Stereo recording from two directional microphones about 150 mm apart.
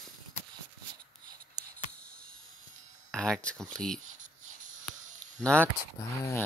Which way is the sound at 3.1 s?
5° left (ahead or behind).